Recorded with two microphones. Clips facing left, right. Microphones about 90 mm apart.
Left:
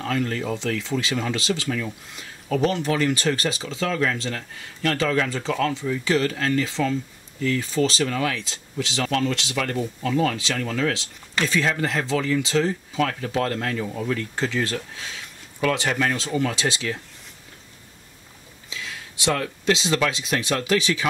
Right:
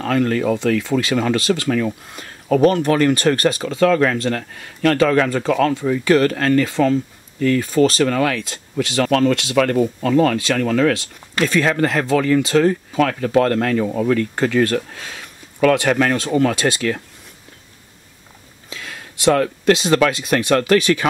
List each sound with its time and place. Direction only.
0.0 s speech: 60° right (ahead or behind)
18.7 s speech: 50° right (ahead or behind)